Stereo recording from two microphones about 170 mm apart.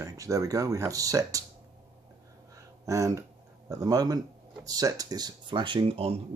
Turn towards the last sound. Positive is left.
turn(degrees=-35)  # may be behind; listen again after turning